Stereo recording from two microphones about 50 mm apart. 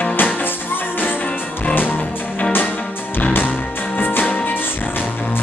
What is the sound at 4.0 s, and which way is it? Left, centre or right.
Music, left.